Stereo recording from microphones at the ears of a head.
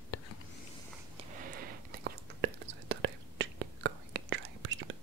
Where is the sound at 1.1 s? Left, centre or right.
Right.